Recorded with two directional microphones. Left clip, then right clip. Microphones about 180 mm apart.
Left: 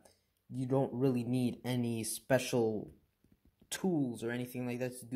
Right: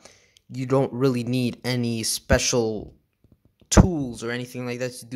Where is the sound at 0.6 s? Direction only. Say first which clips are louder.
Right 11 dB; 40° right (ahead or behind).